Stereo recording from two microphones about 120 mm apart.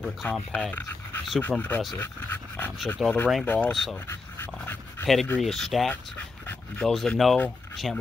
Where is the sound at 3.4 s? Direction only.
15° left (ahead or behind).